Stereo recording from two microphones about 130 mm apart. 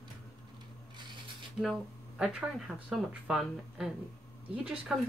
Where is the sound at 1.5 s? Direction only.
5° right (ahead or behind).